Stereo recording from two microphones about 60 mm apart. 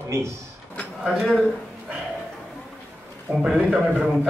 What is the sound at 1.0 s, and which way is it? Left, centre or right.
Speech, centre.